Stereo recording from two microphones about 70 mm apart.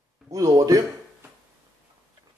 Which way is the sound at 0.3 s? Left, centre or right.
Right.